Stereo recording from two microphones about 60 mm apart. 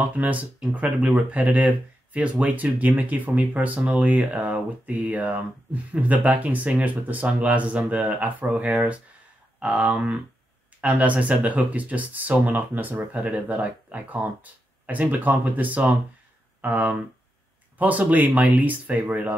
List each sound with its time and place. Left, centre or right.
0.0 s speech: right
13.2 s speech: right